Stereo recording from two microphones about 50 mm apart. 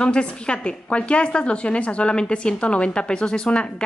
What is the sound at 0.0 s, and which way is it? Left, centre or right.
A woman's voice, centre.